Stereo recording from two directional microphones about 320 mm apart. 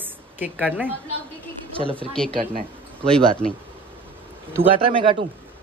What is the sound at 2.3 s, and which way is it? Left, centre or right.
Speech, right.